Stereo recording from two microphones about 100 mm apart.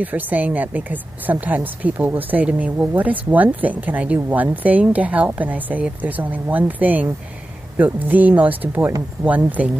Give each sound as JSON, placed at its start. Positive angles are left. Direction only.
{"t": 0.0, "sound": "speech", "side_deg": -15}